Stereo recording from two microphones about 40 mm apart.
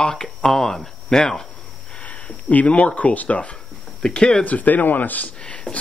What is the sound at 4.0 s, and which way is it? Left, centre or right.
Speech, centre.